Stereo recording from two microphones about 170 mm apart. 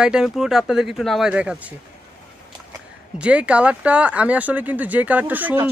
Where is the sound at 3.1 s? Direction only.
5° right (ahead or behind).